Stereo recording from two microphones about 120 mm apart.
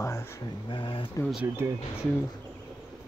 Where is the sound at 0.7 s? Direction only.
45° left (ahead or behind).